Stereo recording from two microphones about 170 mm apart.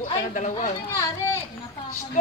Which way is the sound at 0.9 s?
15° left (ahead or behind).